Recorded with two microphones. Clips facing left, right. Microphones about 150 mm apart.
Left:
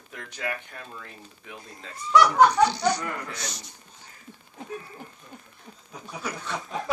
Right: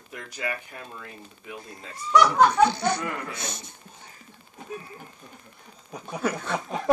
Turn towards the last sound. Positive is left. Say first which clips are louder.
# right 6 dB
turn(degrees=-50)  # may be behind; listen again after turning